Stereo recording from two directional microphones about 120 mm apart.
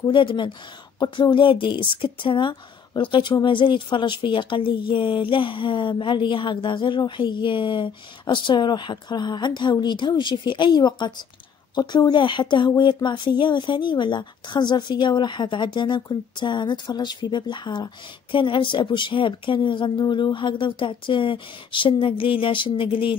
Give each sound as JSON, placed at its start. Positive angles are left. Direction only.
{"t": 0.1, "sound": "speech", "side_deg": 45}